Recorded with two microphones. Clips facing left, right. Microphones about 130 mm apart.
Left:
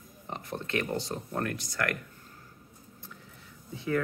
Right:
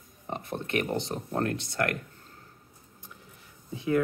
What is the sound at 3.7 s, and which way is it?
Speech, 15° right (ahead or behind).